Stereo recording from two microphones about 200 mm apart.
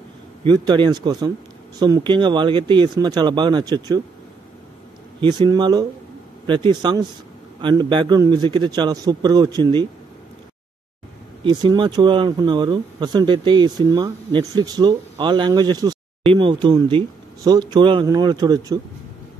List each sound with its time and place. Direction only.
0.5 s speech: 20° right (ahead or behind)
5.2 s speech: 25° right (ahead or behind)
11.4 s speech: 20° right (ahead or behind)